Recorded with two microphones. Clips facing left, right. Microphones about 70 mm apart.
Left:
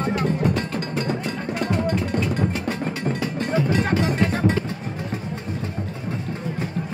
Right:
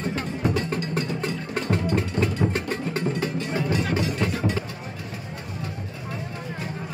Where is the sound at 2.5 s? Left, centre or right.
Right.